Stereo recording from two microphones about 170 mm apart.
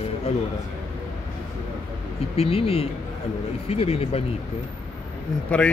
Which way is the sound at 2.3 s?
35° left (ahead or behind).